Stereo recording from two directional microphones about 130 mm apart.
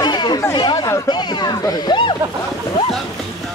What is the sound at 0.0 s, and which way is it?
Chatter, 35° left (ahead or behind).